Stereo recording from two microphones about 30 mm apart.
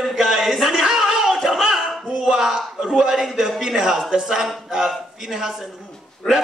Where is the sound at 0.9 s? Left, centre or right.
Centre.